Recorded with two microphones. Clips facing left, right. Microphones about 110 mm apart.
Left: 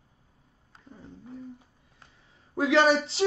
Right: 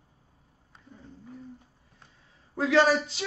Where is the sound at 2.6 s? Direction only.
20° left (ahead or behind).